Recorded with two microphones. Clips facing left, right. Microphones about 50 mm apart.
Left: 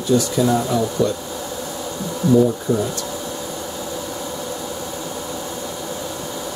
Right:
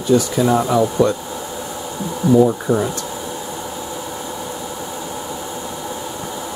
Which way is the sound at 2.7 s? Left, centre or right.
Right.